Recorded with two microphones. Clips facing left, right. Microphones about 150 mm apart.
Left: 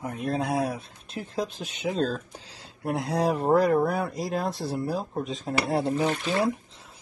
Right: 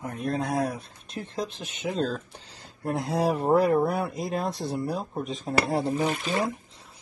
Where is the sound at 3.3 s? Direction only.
Centre (ahead or behind).